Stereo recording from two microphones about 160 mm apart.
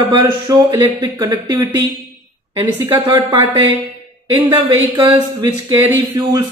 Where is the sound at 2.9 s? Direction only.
25° right (ahead or behind).